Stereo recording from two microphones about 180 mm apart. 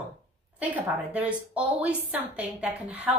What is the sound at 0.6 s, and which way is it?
A woman's voice, 10° right (ahead or behind).